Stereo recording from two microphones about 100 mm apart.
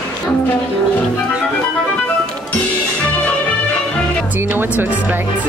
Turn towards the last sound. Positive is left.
turn(degrees=-20)  # may be behind; listen again after turning